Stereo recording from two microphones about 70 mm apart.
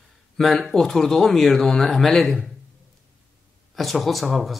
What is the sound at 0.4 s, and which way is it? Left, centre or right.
Speech, centre.